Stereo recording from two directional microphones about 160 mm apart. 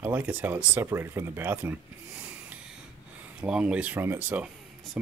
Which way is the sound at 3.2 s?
5° right (ahead or behind).